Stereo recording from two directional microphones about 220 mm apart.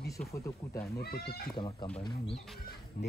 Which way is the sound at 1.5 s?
20° left (ahead or behind).